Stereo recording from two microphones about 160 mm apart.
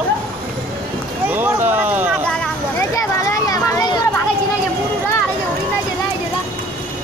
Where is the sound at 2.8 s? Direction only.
20° left (ahead or behind).